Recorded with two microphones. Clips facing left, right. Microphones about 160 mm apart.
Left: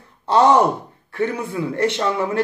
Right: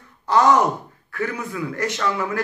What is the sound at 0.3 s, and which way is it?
A man's voice, 30° left (ahead or behind).